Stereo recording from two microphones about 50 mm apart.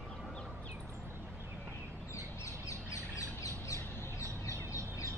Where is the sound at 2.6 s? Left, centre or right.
Left.